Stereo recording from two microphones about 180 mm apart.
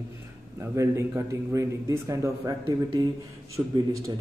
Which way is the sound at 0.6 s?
15° right (ahead or behind).